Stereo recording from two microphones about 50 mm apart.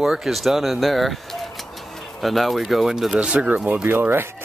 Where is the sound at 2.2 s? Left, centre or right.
Centre.